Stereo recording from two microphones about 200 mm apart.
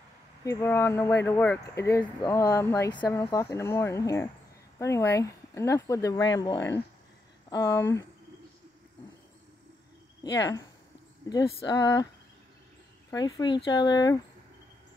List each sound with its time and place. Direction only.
0.4 s speech: 15° left (ahead or behind)
10.2 s speech: 20° left (ahead or behind)
13.1 s speech: 20° left (ahead or behind)